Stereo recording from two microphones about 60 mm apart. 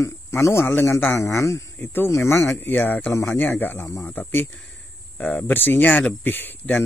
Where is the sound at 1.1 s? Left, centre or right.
Left.